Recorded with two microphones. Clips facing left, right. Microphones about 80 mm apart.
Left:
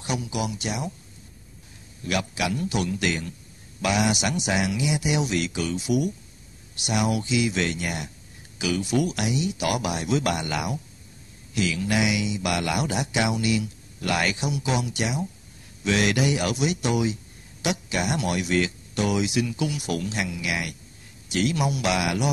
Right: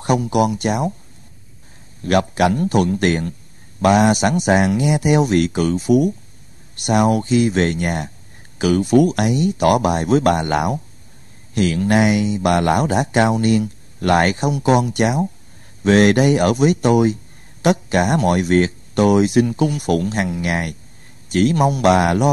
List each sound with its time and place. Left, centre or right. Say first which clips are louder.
0.0 s speech: right 12 dB; right
2.0 s speech: right 11 dB; right